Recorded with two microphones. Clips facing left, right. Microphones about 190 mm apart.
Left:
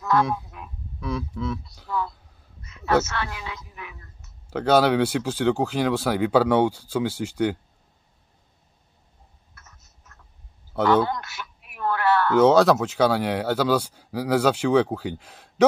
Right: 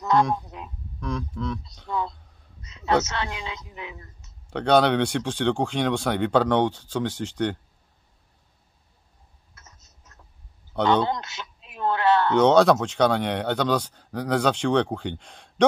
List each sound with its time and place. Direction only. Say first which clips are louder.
0.2 s speech: right 1 dB; 5° left (ahead or behind)
1.9 s a man's voice: even; 20° right (ahead or behind)
4.5 s speech: even; 5° left (ahead or behind)
9.6 s a sound: even; 20° right (ahead or behind)
10.8 s a man's voice: left 1 dB; 5° left (ahead or behind)
11.1 s speech: right 2 dB; 20° right (ahead or behind)
12.4 s speech: left 2 dB; centre (ahead or behind)